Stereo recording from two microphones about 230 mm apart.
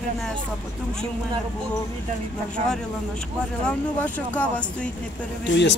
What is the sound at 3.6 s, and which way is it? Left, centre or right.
Speech, centre.